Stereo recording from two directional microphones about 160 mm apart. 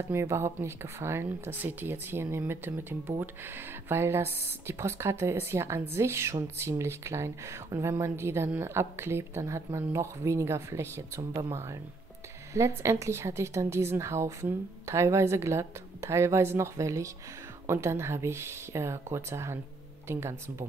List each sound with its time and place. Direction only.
0.1 s speech: 15° right (ahead or behind)